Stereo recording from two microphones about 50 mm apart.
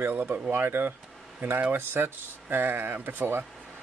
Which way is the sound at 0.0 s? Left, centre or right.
Right.